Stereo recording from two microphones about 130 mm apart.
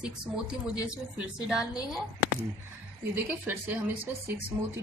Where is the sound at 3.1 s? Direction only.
15° right (ahead or behind).